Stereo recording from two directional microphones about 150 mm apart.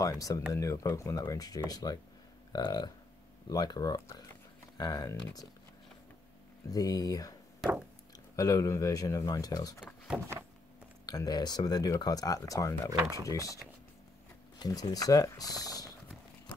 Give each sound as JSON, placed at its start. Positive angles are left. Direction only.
{"t": 0.0, "sound": "speech", "side_deg": 20}
{"t": 6.7, "sound": "speech", "side_deg": 25}
{"t": 8.4, "sound": "speech", "side_deg": 25}
{"t": 10.0, "sound": "power windows", "side_deg": -5}
{"t": 11.1, "sound": "speech", "side_deg": 25}
{"t": 14.6, "sound": "speech", "side_deg": 25}